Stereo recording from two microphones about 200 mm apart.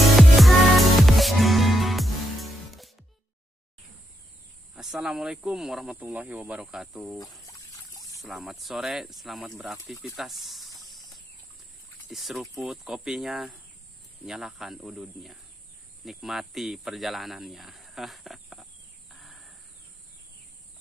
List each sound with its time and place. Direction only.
0.0 s music: centre (ahead or behind)
4.7 s speech: 5° right (ahead or behind)
7.2 s speech: 15° left (ahead or behind)
8.3 s speech: centre (ahead or behind)
10.1 s a sound: centre (ahead or behind)
12.1 s speech: centre (ahead or behind)